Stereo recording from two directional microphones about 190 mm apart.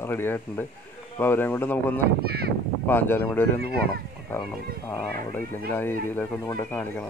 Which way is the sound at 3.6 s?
55° right (ahead or behind).